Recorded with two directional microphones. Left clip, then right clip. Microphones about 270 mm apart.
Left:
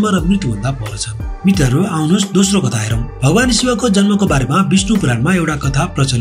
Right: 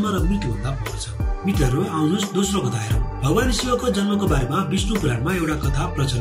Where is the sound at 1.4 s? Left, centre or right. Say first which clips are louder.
Left 7 dB; left.